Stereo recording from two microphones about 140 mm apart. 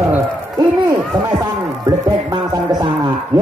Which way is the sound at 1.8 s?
25° right (ahead or behind).